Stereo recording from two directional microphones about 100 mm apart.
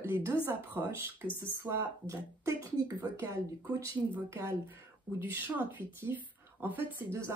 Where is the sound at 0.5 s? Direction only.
20° right (ahead or behind).